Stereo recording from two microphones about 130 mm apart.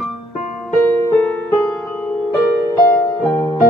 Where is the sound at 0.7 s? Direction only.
5° left (ahead or behind).